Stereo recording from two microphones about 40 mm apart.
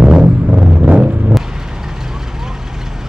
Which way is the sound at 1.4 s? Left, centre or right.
Centre.